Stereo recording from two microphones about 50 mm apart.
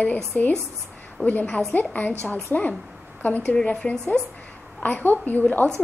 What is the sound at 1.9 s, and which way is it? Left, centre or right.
Speech, left.